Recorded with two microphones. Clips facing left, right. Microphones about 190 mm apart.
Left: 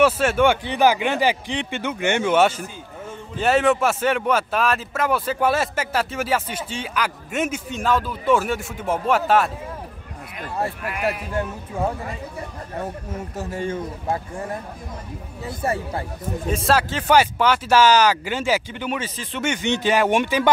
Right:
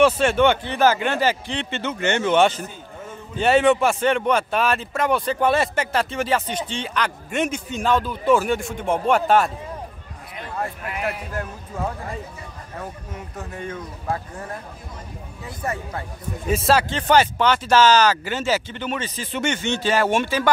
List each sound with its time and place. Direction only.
0.0 s speech: 5° left (ahead or behind)
10.6 s a man's voice: 25° left (ahead or behind)
13.4 s a man's voice: 30° left (ahead or behind)
15.6 s a man's voice: 30° left (ahead or behind)
16.4 s speech: 5° right (ahead or behind)
19.1 s speech: centre (ahead or behind)
19.5 s speech: 15° left (ahead or behind)